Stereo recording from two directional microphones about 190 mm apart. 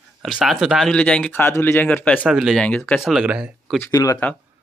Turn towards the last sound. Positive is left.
turn(degrees=15)  # may be behind; listen again after turning